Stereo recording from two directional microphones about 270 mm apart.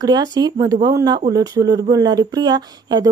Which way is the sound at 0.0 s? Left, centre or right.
Centre.